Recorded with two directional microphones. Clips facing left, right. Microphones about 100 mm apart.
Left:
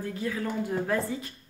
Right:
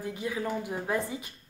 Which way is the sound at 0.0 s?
15° right (ahead or behind).